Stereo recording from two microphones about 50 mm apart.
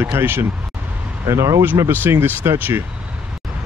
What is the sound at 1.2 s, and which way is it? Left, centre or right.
Speech, right.